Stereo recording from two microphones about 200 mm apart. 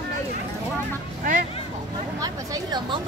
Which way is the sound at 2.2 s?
20° right (ahead or behind).